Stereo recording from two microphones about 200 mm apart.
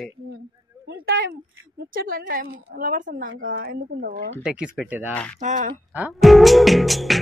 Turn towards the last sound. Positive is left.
turn(degrees=0)  # may be behind; listen again after turning